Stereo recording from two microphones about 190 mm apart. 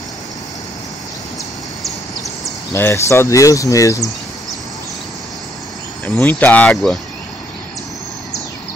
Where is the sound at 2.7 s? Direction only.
15° left (ahead or behind).